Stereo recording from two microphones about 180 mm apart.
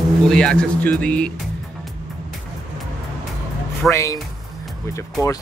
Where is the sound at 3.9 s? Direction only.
15° left (ahead or behind).